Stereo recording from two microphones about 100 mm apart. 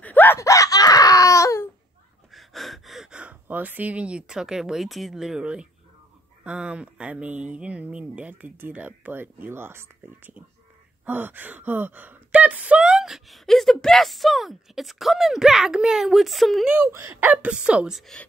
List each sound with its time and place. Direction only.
0.0 s screaming: 20° left (ahead or behind)
0.4 s a sound: 30° left (ahead or behind)
2.3 s speech: centre (ahead or behind)
16.8 s speech: 25° right (ahead or behind)
17.3 s speech: 15° right (ahead or behind)